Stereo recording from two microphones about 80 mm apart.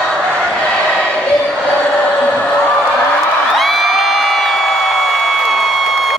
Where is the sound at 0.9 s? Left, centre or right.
Centre.